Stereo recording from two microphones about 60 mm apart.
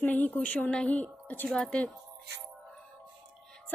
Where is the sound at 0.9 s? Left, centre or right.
Left.